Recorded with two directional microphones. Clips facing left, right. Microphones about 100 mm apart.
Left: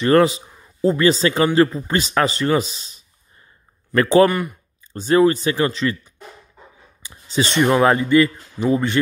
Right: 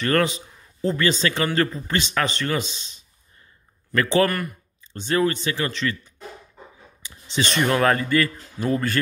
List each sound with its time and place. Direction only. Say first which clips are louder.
0.0 s speech: left 7 dB; 25° left (ahead or behind)
2.6 s speech: left 3 dB; 25° right (ahead or behind)
3.9 s speech: left 6 dB; 30° left (ahead or behind)
4.3 s speech: left 4 dB; 15° left (ahead or behind)
4.9 s speech: left 7 dB; 30° left (ahead or behind)
7.1 s a sound: left 4 dB; 35° left (ahead or behind)
7.6 s speech: left 5 dB; 20° left (ahead or behind)